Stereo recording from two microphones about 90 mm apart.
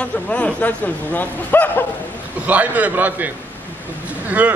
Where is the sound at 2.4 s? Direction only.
15° right (ahead or behind).